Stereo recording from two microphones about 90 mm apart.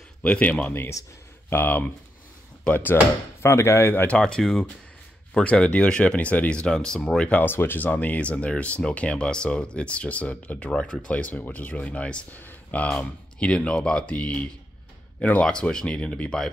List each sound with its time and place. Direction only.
0.2 s speech: 15° left (ahead or behind)
4.2 s speech: 5° left (ahead or behind); by 12.9 s 20° left (ahead or behind)
12.9 s speech: 10° left (ahead or behind)